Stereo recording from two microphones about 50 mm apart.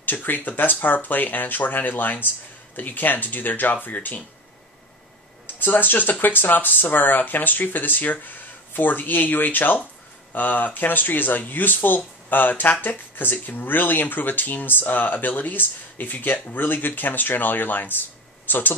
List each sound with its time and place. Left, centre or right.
0.0 s speech: left
5.6 s speech: left